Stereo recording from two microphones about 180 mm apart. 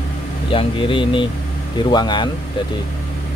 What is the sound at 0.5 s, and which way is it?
Speech, 30° left (ahead or behind).